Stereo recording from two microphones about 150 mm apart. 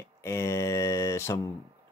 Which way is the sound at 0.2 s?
20° left (ahead or behind).